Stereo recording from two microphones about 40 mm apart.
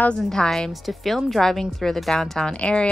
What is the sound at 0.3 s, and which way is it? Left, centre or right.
Speech, centre.